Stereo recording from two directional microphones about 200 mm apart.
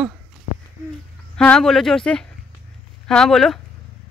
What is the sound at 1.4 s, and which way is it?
Speech, 5° left (ahead or behind).